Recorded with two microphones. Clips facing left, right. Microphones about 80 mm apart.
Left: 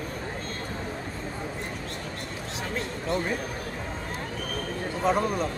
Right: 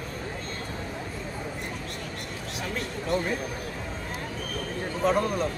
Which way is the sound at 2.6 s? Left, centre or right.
Left.